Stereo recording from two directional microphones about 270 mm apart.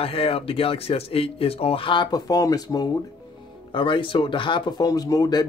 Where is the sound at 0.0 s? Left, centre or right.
Left.